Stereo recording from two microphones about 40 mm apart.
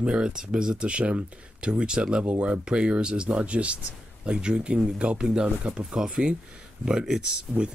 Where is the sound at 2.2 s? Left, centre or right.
Right.